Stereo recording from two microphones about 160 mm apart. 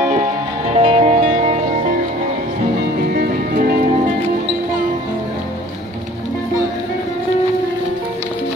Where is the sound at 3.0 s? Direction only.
65° right (ahead or behind).